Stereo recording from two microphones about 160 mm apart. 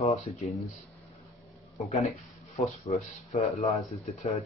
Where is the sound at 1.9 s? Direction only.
40° left (ahead or behind).